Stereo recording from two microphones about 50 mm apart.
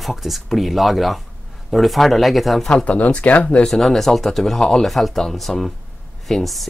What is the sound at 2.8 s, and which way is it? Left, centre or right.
Speech, left.